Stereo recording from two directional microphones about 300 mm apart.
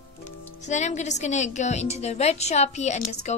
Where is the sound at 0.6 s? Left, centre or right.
Left.